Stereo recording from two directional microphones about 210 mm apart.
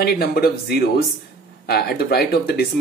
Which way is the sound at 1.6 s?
50° left (ahead or behind).